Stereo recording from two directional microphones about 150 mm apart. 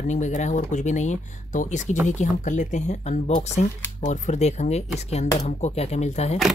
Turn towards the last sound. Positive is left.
turn(degrees=45)  # may be behind; listen again after turning